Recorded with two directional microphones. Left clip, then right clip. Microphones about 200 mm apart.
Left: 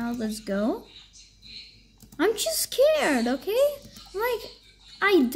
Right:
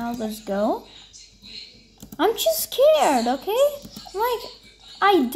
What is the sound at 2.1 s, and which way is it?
Speech, 30° left (ahead or behind).